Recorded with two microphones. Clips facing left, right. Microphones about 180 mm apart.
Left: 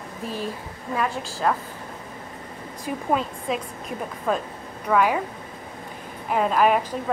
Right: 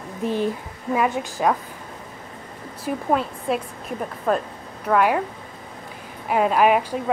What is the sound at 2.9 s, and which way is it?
Speech, 50° right (ahead or behind).